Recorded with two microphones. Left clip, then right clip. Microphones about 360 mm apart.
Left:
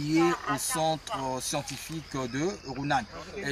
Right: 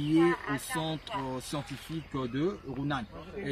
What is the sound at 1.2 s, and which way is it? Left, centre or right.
Speech, centre.